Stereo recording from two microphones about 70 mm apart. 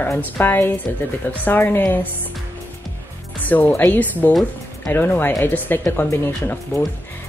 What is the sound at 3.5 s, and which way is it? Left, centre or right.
Speech, left.